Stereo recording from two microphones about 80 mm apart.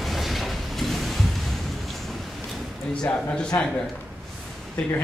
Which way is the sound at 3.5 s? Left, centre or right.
Left.